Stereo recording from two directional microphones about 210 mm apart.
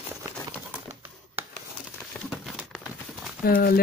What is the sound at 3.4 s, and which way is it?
Speech, 45° left (ahead or behind).